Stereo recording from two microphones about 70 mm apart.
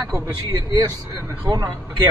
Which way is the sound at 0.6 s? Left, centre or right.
Right.